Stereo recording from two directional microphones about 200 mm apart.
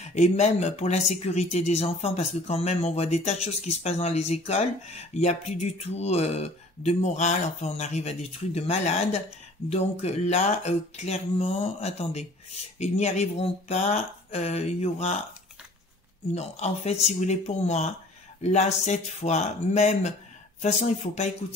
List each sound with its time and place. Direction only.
0.0 s speech: 35° left (ahead or behind)
16.3 s speech: 35° left (ahead or behind)